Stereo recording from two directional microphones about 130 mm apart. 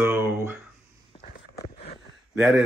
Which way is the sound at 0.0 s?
20° right (ahead or behind).